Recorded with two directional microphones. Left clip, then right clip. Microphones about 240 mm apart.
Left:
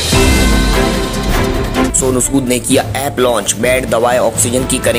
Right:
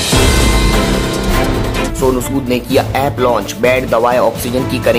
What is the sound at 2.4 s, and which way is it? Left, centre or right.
Speech, centre.